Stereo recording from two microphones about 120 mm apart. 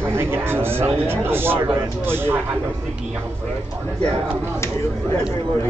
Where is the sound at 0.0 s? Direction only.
20° right (ahead or behind).